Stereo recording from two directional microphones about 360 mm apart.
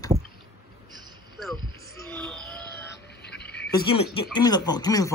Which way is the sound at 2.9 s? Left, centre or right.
Left.